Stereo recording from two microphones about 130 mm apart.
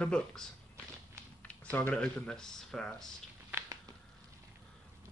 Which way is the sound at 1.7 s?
10° left (ahead or behind).